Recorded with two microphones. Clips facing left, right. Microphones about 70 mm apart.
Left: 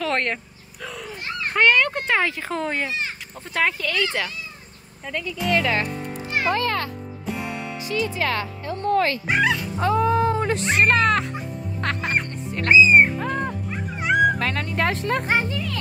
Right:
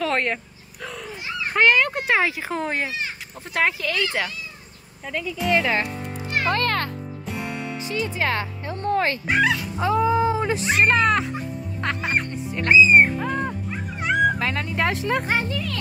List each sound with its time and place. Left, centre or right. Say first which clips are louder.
0.0 s a sound: right 1 dB; centre
1.5 s a child's voice: even; centre
6.5 s music: right 1 dB; right
7.2 s music: left 2 dB; centre
8.1 s speech: even; right
9.4 s speech: even; centre
14.0 s cat: left 2 dB; centre
14.4 s speech: even; centre